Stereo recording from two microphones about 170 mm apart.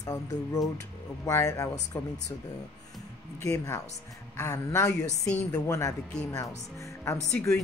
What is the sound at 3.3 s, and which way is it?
A woman's voice, 20° left (ahead or behind).